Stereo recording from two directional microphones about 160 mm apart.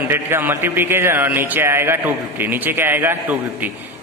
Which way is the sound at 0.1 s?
15° right (ahead or behind).